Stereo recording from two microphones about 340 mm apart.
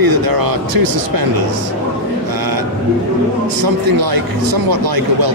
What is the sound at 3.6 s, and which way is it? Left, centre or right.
Speech, right.